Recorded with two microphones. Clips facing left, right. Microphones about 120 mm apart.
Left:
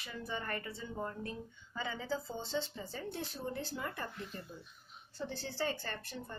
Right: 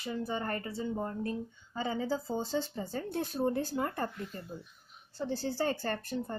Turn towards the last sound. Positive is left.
turn(degrees=-45)  # may be behind; listen again after turning